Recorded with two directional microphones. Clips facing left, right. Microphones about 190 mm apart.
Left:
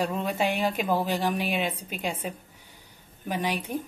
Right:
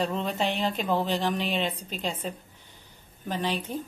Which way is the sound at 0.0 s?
10° left (ahead or behind).